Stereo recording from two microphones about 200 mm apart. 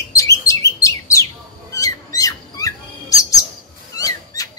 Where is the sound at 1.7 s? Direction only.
15° left (ahead or behind).